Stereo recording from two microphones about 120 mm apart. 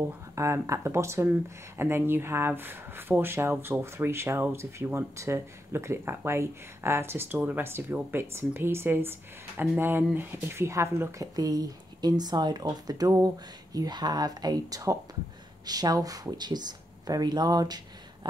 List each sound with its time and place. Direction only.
0.4 s speech: 25° right (ahead or behind)